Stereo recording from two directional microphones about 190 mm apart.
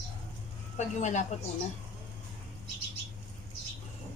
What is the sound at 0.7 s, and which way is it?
Speech, 40° left (ahead or behind).